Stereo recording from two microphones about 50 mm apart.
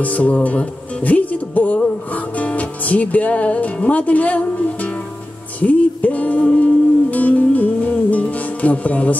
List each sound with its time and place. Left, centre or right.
0.0 s speech: left
2.1 s music: left